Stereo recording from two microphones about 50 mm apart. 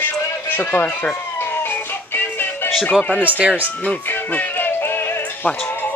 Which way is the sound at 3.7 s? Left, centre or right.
Left.